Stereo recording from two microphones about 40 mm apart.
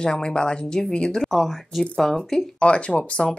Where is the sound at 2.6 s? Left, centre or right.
Left.